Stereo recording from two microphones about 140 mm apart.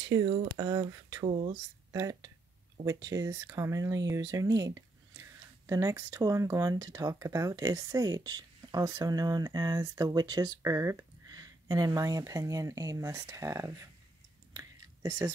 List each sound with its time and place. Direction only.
0.6 s speech: 25° right (ahead or behind)
1.2 s speech: 40° right (ahead or behind)
1.9 s speech: 25° right (ahead or behind)
14.5 s a sound: 25° right (ahead or behind)